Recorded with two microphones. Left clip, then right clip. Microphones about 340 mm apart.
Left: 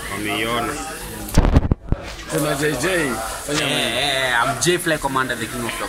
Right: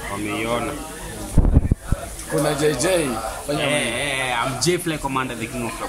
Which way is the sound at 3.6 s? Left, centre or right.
Centre.